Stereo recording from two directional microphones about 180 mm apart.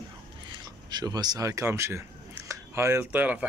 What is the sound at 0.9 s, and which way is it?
Speech, 20° right (ahead or behind).